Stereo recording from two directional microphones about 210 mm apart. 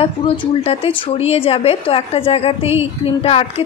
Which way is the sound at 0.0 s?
25° left (ahead or behind).